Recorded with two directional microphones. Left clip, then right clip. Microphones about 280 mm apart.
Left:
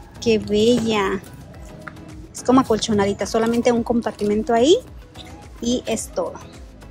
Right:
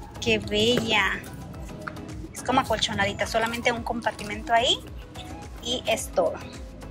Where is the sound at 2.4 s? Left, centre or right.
Centre.